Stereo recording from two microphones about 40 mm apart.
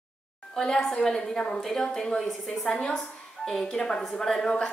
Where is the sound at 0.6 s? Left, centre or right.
Centre.